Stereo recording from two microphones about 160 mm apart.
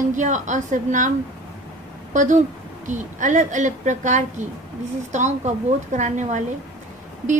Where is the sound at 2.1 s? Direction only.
50° right (ahead or behind).